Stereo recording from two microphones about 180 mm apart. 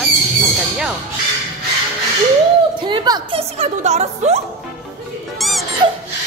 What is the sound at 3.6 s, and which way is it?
Speech, 40° right (ahead or behind).